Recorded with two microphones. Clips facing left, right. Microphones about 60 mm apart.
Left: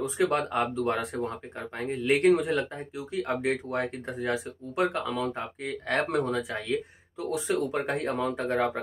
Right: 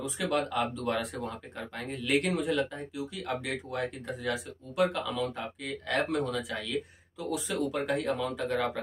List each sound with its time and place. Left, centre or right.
0.0 s speech: left